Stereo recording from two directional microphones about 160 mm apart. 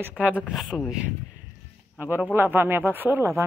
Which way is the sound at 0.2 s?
Centre (ahead or behind).